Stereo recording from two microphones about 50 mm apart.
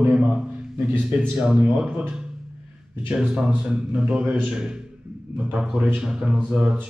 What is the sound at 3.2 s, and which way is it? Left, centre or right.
Speech, centre.